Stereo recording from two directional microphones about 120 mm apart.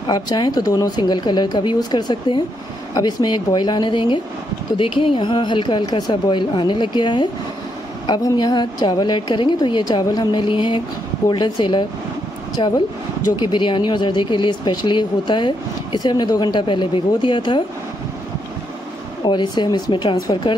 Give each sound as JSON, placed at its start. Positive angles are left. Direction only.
{"t": 0.0, "sound": "speech", "side_deg": 35}
{"t": 19.2, "sound": "speech", "side_deg": 40}